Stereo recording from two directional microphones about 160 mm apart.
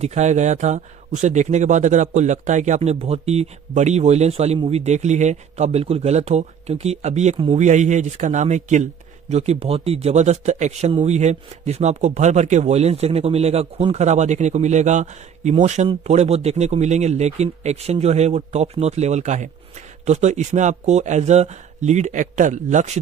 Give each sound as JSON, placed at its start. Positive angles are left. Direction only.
{"t": 0.0, "sound": "speech", "side_deg": -45}